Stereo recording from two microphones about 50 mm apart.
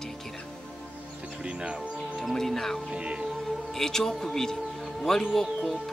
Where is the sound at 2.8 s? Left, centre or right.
Centre.